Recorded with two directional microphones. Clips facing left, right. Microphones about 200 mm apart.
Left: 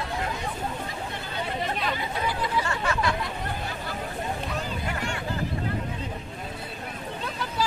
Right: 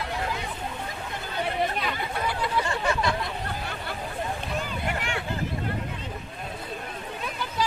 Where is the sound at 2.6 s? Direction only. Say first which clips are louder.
Right 1 dB; 20° right (ahead or behind).